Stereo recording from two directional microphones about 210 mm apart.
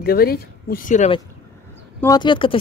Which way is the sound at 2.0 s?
20° left (ahead or behind).